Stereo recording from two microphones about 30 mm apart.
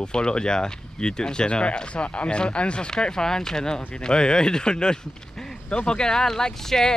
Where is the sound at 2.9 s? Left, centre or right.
Left.